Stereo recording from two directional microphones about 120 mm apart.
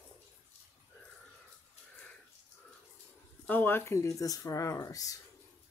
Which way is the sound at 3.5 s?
15° left (ahead or behind).